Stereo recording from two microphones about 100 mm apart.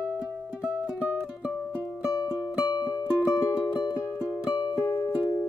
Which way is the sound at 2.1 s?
40° left (ahead or behind).